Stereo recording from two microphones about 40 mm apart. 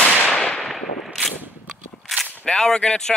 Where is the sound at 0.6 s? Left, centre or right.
Centre.